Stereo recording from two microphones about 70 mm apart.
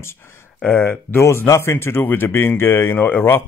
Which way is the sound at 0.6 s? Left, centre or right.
Left.